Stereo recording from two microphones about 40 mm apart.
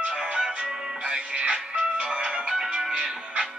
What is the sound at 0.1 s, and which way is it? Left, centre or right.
Music, right.